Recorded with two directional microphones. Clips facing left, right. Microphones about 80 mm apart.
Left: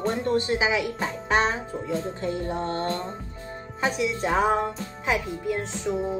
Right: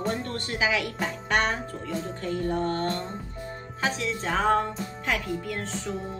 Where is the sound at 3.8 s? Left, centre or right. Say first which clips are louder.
Left 3 dB; centre.